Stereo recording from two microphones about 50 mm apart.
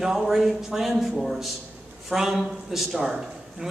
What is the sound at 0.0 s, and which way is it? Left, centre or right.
A man's voice, centre.